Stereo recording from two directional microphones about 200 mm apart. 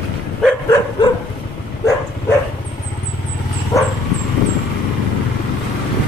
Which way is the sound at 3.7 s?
15° left (ahead or behind).